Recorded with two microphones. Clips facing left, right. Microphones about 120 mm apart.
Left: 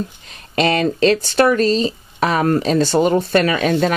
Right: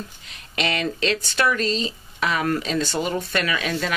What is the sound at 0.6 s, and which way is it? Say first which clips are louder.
Speech: left 9 dB; 40° left (ahead or behind).